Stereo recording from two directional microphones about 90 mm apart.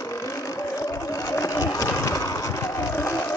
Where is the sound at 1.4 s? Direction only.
35° left (ahead or behind).